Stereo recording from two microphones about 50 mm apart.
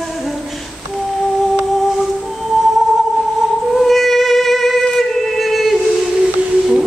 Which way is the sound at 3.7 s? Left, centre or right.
Centre.